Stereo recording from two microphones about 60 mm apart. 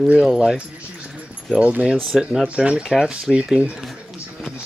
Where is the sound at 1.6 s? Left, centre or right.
Right.